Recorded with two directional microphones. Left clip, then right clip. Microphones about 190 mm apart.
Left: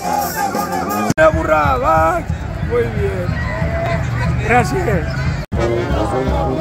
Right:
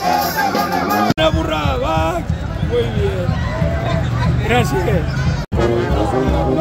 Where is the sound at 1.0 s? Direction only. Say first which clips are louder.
Left 3 dB; 20° left (ahead or behind).